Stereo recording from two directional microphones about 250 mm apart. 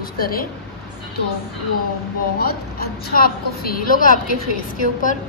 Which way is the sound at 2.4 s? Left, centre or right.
Left.